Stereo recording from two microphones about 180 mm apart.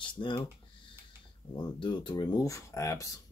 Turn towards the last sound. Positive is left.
turn(degrees=20)  # may be behind; listen again after turning